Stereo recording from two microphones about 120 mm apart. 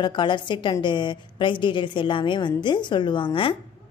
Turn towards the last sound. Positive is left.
turn(degrees=45)  # may be behind; listen again after turning